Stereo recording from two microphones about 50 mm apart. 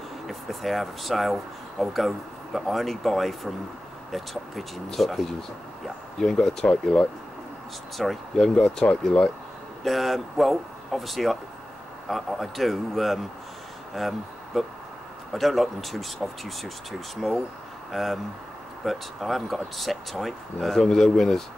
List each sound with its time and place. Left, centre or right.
0.3 s speech: centre
6.7 s speech: centre
8.0 s speech: centre
9.8 s speech: centre
17.9 s speech: centre